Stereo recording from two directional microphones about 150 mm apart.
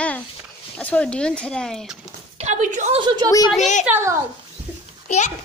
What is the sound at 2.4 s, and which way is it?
Speech, 55° right (ahead or behind).